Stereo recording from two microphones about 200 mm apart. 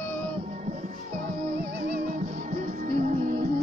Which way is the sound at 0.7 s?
40° right (ahead or behind).